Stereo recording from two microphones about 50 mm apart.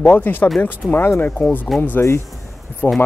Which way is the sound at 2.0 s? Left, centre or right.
Left.